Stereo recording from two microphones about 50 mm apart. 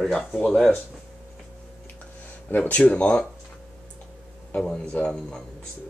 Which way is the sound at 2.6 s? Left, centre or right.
Left.